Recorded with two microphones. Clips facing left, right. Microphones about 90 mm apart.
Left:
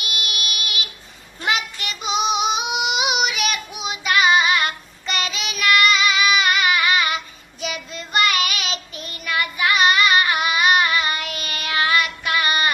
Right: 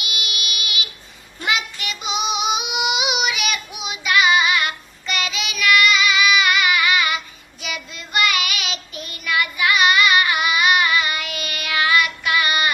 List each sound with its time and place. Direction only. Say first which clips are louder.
0.0 s child singing: left 1 dB; 45° left (ahead or behind)
2.0 s child singing: left 2 dB; 5° right (ahead or behind)
2.5 s female singing: even; 40° left (ahead or behind)
3.3 s child singing: even; 40° left (ahead or behind)